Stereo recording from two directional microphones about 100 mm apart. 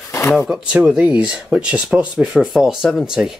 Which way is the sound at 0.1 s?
25° left (ahead or behind).